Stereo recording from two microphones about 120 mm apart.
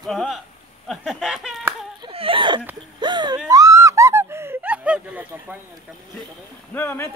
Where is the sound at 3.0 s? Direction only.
40° right (ahead or behind).